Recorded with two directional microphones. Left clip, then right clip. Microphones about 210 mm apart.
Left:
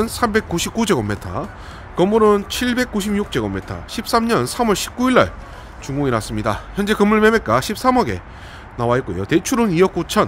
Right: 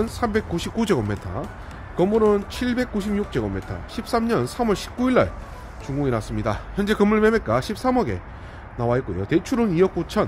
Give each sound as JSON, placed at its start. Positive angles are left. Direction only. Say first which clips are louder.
{"t": 0.0, "sound": "speech", "louder": "left 5 dB", "side_deg": 25}